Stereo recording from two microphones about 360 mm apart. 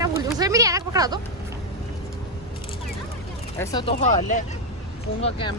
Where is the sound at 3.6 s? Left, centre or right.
Centre.